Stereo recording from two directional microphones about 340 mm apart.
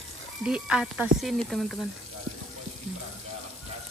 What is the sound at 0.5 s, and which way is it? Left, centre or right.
Speech, centre.